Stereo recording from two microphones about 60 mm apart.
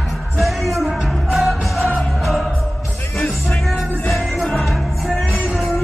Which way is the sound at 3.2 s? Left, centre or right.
Centre.